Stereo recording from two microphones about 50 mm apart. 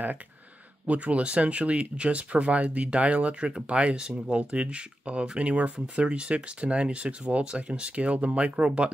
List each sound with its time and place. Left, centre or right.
0.8 s speech: right